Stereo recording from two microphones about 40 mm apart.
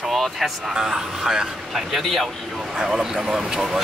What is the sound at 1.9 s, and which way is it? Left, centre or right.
Speech, centre.